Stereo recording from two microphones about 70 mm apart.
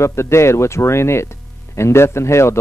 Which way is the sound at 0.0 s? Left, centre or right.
Left.